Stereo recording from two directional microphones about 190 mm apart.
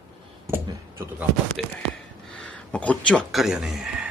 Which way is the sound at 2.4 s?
5° left (ahead or behind).